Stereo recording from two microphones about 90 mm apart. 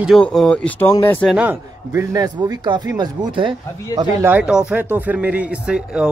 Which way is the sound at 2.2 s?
45° right (ahead or behind).